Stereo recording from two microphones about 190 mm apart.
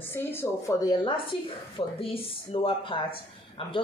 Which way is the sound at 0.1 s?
10° left (ahead or behind).